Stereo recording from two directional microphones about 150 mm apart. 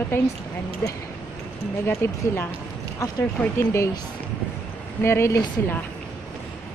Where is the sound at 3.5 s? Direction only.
20° left (ahead or behind).